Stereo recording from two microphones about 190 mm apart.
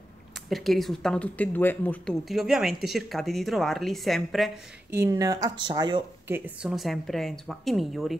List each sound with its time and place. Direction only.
0.5 s speech: centre (ahead or behind)
4.9 s speech: 15° right (ahead or behind)
6.2 s speech: 10° right (ahead or behind)